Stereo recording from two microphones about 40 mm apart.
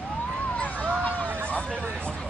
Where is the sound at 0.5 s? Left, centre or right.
Left.